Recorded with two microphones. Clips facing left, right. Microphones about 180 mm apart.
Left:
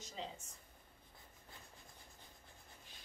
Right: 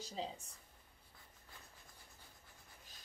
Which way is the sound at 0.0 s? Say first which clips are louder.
Right 3 dB; 35° right (ahead or behind).